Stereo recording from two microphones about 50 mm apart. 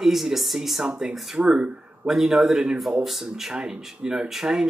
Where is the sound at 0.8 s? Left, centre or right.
Centre.